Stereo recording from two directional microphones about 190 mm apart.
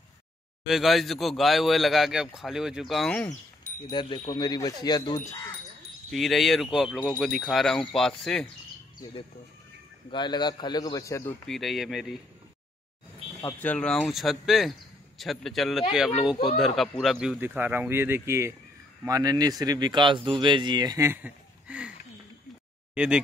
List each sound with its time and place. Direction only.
0.7 s a man's voice: centre (ahead or behind)
3.8 s a man's voice: 25° left (ahead or behind)
6.0 s a man's voice: centre (ahead or behind)
10.1 s a man's voice: 20° left (ahead or behind)
11.4 s a man's voice: centre (ahead or behind)
13.4 s a man's voice: 15° left (ahead or behind); by 21.9 s 5° right (ahead or behind)
22.9 s speech: 5° right (ahead or behind)